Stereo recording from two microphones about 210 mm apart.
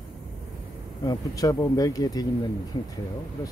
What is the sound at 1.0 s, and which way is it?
Speech, 20° left (ahead or behind).